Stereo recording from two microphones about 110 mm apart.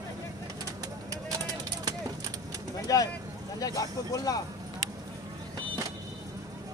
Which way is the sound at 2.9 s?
30° left (ahead or behind).